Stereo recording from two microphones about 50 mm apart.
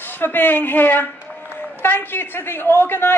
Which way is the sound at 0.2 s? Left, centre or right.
Left.